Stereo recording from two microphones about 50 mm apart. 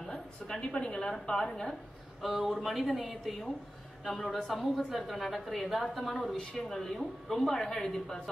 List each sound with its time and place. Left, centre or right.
0.1 s a woman's voice: centre
2.2 s a woman's voice: centre
6.3 s speech: centre